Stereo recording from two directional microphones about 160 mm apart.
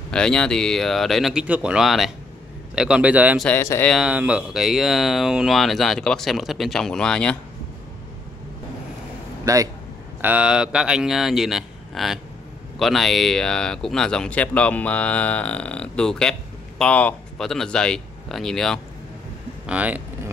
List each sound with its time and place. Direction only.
0.1 s a man's voice: 5° left (ahead or behind)
3.4 s speech: 15° left (ahead or behind)
3.9 s speech: 5° right (ahead or behind)
9.4 s speech: 20° right (ahead or behind)
10.2 s speech: 5° right (ahead or behind)
19.6 s speech: 10° right (ahead or behind)